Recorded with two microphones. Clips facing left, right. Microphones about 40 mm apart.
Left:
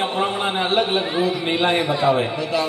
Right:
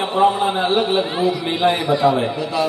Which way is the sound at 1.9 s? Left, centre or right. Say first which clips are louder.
Right 2 dB; left.